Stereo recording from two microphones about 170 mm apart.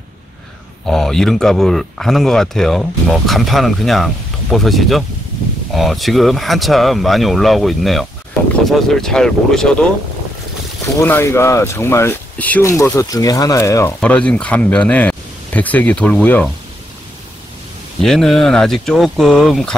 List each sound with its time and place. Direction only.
0.8 s speech: centre (ahead or behind)
11.0 s speech: 15° left (ahead or behind)
14.0 s speech: 5° left (ahead or behind)
18.0 s speech: centre (ahead or behind)